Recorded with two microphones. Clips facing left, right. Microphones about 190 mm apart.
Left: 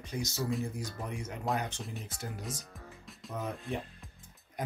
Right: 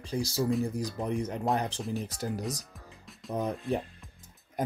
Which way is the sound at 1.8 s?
Centre (ahead or behind).